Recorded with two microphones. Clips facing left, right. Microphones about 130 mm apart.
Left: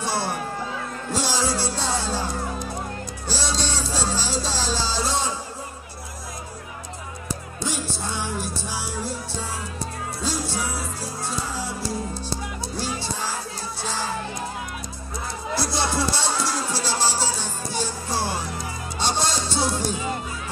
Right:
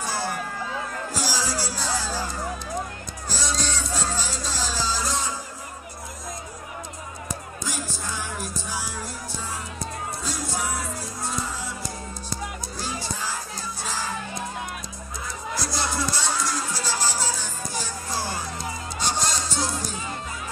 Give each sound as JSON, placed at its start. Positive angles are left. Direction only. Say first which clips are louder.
{"t": 0.0, "sound": "a sound", "louder": "left 3 dB", "side_deg": 30}
{"t": 1.1, "sound": "music", "louder": "left 5 dB", "side_deg": 25}
{"t": 3.3, "sound": "music", "louder": "left 2 dB", "side_deg": 30}
{"t": 7.6, "sound": "music", "louder": "left 5 dB", "side_deg": 30}
{"t": 10.2, "sound": "music", "louder": "left 4 dB", "side_deg": 30}
{"t": 15.5, "sound": "music", "louder": "left 4 dB", "side_deg": 30}